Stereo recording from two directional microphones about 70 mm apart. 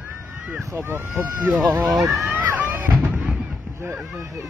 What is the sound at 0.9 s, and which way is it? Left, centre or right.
Speech, right.